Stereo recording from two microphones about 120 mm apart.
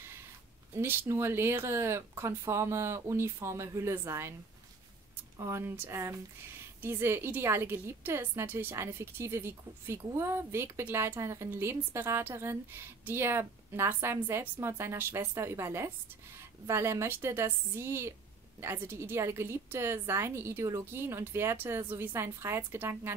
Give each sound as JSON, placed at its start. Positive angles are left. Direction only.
{"t": 0.7, "sound": "a woman's voice", "side_deg": -20}
{"t": 5.4, "sound": "a woman's voice", "side_deg": -20}